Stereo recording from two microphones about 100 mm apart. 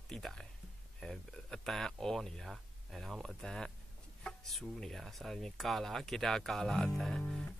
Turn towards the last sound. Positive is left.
turn(degrees=10)  # may be behind; listen again after turning